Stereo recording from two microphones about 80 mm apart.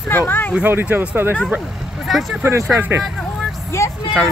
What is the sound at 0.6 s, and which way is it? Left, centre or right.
Speech, right.